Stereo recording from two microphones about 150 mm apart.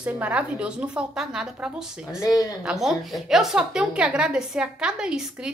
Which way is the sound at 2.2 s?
25° left (ahead or behind).